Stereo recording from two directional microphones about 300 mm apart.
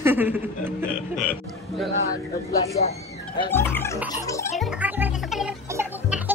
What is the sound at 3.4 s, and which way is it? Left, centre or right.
Music, centre.